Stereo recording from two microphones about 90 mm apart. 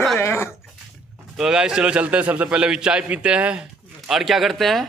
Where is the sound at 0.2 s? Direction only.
30° left (ahead or behind).